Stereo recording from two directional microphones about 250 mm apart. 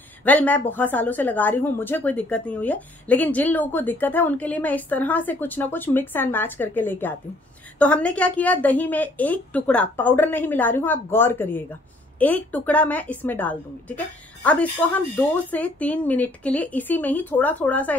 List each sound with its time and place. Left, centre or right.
0.2 s speech: centre